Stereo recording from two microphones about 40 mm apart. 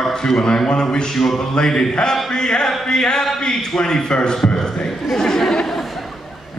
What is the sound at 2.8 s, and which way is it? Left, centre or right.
Speech, centre.